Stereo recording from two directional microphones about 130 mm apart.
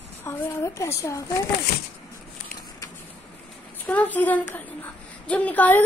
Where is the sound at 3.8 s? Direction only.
10° left (ahead or behind).